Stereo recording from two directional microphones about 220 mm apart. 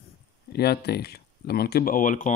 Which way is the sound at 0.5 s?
45° left (ahead or behind).